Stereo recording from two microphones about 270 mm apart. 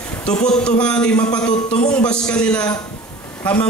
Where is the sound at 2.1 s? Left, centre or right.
Centre.